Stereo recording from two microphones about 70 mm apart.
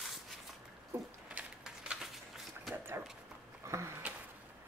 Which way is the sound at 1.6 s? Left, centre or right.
Centre.